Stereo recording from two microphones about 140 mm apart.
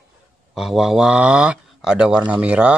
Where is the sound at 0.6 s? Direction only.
Centre (ahead or behind).